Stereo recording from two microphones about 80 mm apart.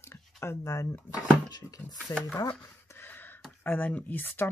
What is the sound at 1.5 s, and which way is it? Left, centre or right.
Speech, left.